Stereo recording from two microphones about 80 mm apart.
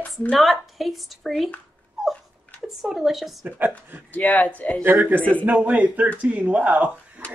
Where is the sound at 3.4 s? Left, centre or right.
Right.